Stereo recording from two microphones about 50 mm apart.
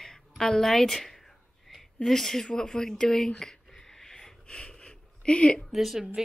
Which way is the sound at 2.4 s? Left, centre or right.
Centre.